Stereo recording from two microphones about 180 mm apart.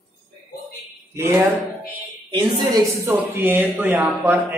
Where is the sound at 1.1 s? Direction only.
15° right (ahead or behind).